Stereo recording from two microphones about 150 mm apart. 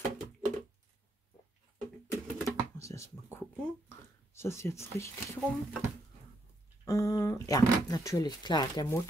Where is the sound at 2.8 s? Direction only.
20° left (ahead or behind).